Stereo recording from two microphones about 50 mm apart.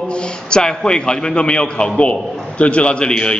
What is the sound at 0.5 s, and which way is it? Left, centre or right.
A man's voice, centre.